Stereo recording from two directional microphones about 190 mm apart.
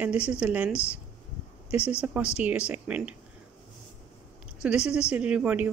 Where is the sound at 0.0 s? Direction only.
5° right (ahead or behind).